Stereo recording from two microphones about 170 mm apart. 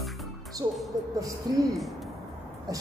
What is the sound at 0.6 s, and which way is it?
Music, 20° right (ahead or behind).